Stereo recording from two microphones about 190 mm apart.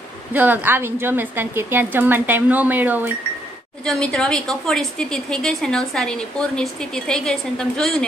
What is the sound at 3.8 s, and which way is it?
A woman's voice, 5° left (ahead or behind).